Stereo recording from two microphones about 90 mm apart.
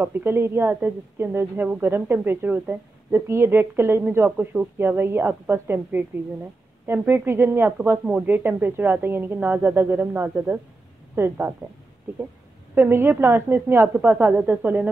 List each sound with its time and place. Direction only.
0.0 s speech: 25° right (ahead or behind)
12.7 s speech: 25° right (ahead or behind)